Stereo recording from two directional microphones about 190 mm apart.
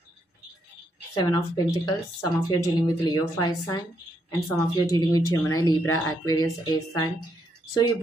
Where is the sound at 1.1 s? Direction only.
20° left (ahead or behind).